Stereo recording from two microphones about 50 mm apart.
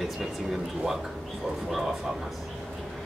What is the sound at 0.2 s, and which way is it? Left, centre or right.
Speech, centre.